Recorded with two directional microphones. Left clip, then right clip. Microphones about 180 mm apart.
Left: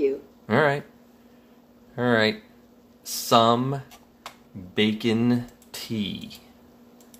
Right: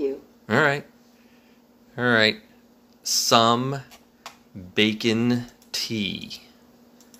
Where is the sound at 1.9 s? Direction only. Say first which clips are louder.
Right 2 dB; 5° right (ahead or behind).